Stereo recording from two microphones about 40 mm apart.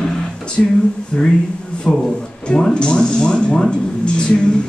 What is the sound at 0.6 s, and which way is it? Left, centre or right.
Speech, left.